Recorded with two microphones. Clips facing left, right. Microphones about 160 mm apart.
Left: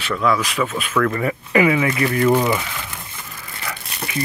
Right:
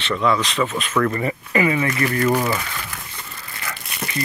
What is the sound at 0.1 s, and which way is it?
Speech, centre (ahead or behind).